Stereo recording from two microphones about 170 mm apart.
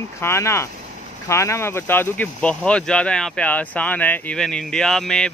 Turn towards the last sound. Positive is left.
turn(degrees=5)  # may be behind; listen again after turning